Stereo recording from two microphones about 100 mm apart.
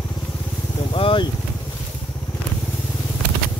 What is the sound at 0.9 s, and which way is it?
Speech, 60° left (ahead or behind).